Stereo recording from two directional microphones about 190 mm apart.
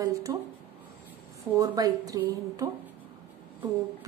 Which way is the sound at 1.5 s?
20° right (ahead or behind).